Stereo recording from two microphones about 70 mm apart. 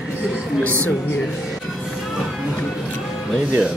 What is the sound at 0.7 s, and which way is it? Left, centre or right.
Speech, left.